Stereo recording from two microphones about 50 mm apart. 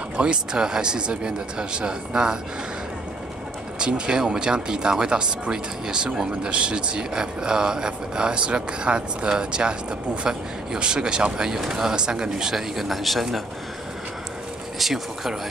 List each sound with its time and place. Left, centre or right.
0.2 s speech: centre
3.8 s speech: centre
14.8 s speech: centre